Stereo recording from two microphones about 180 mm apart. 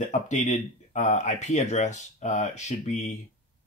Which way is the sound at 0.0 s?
40° left (ahead or behind).